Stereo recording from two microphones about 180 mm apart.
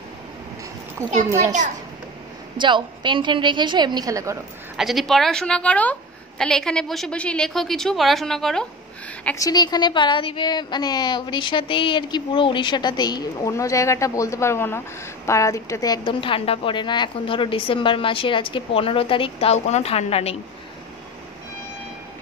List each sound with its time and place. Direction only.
2.5 s a woman's voice: 25° right (ahead or behind)
4.7 s a woman's voice: centre (ahead or behind)
9.4 s a woman's voice: 20° left (ahead or behind)